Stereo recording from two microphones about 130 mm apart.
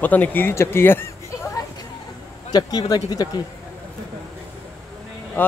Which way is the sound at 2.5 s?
30° left (ahead or behind).